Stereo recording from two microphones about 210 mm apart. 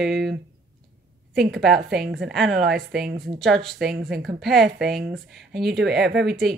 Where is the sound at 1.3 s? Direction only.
Centre (ahead or behind).